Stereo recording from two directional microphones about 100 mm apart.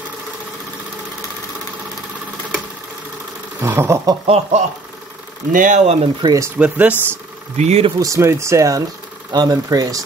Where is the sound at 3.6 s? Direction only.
25° right (ahead or behind).